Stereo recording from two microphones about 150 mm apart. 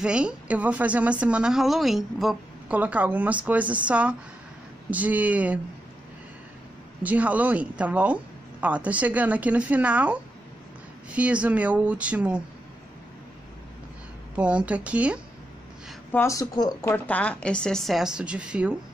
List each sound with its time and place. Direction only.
0.0 s a woman's voice: 5° right (ahead or behind)
7.0 s a woman's voice: 10° right (ahead or behind)
14.3 s a woman's voice: 10° right (ahead or behind)
16.1 s speech: 20° left (ahead or behind)
16.9 s a woman's voice: 10° left (ahead or behind); by 18.8 s 5° right (ahead or behind)